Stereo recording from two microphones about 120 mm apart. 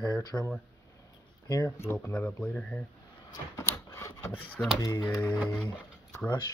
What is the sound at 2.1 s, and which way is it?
Speech, 10° left (ahead or behind).